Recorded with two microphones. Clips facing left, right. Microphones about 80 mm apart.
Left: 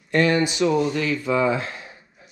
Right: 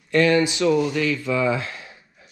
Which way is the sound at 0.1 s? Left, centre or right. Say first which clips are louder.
Right 2 dB; left.